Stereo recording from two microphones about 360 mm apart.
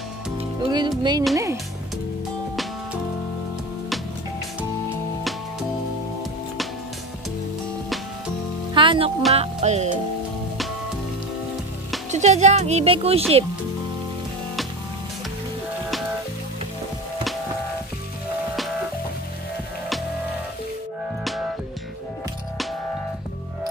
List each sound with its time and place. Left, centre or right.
0.4 s music: centre
4.6 s music: centre
8.7 s music: centre
12.1 s speech: centre
21.2 s music: centre